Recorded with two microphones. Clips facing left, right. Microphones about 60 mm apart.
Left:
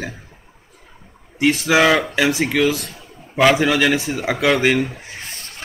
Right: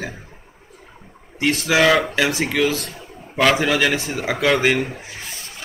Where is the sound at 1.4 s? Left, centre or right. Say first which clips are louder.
Left 2 dB; centre.